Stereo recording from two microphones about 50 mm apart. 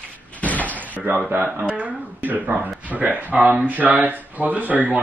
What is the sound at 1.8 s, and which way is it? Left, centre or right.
Speech, right.